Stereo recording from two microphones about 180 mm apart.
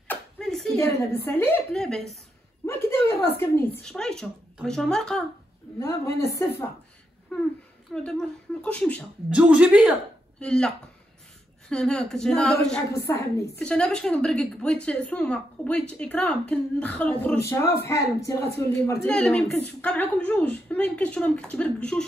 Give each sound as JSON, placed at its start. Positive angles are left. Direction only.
{"t": 0.1, "sound": "a sound", "side_deg": 0}
{"t": 0.7, "sound": "speech", "side_deg": 15}
{"t": 2.6, "sound": "a woman's voice", "side_deg": 15}
{"t": 6.1, "sound": "speech", "side_deg": 15}
{"t": 7.9, "sound": "a woman's voice", "side_deg": 5}
{"t": 9.3, "sound": "speech", "side_deg": -5}
{"t": 10.4, "sound": "a woman's voice", "side_deg": 5}
{"t": 11.7, "sound": "a woman's voice", "side_deg": 5}
{"t": 12.9, "sound": "speech", "side_deg": 15}
{"t": 13.6, "sound": "a woman's voice", "side_deg": 5}